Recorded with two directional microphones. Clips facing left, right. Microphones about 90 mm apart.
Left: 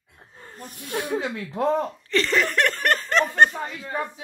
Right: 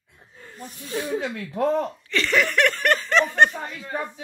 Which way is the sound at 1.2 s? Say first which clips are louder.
Right 1 dB; 25° left (ahead or behind).